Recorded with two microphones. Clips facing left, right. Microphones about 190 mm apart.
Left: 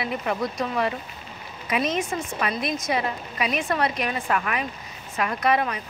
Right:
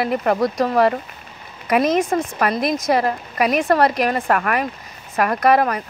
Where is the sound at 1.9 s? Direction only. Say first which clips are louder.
Right 8 dB; 60° right (ahead or behind).